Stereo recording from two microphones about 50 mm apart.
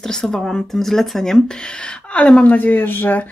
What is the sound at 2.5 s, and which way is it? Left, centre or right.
Speech, left.